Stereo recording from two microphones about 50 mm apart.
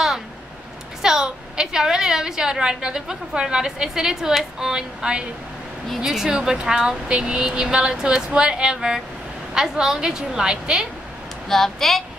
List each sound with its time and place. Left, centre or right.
1.0 s a woman's voice: centre
11.4 s speech: centre